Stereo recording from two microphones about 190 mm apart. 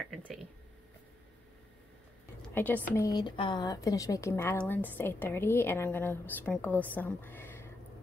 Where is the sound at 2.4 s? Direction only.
10° left (ahead or behind).